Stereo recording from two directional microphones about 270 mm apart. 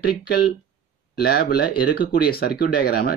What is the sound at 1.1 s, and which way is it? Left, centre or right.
Speech, left.